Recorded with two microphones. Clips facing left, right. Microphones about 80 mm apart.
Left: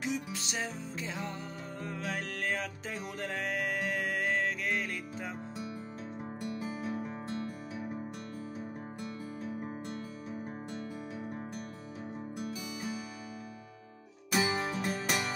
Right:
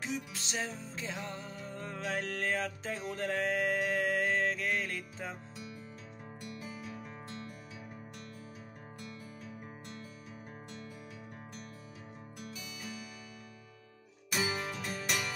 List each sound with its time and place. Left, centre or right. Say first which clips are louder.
0.0 s music: left 3 dB; centre
2.9 s music: right 3 dB; centre
6.4 s music: left 7 dB; left
9.0 s music: left 7 dB; left
14.4 s music: left 3 dB; left
15.0 s music: even; left